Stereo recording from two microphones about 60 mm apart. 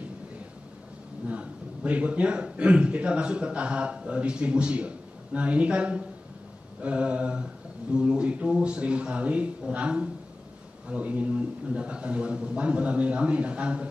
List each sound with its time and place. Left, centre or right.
1.3 s a man's voice: centre